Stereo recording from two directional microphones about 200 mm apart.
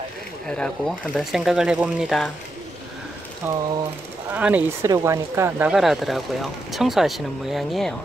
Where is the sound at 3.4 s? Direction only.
20° right (ahead or behind).